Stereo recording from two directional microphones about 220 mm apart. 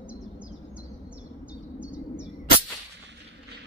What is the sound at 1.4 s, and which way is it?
Bird, 5° right (ahead or behind).